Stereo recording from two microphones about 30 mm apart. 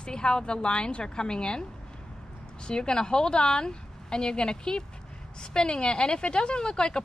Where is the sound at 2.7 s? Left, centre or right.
Left.